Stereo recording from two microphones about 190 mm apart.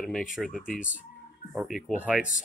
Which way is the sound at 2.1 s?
45° left (ahead or behind).